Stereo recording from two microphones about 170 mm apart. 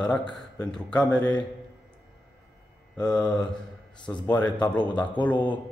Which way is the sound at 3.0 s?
5° left (ahead or behind).